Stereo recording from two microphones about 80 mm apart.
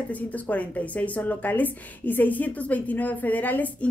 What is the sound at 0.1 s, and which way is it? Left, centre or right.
A woman's voice, centre.